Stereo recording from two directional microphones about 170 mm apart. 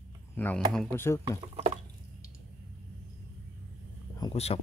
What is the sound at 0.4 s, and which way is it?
Speech, 10° left (ahead or behind).